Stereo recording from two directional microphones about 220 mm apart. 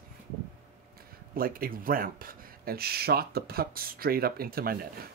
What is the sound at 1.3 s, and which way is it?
Speech, 40° right (ahead or behind).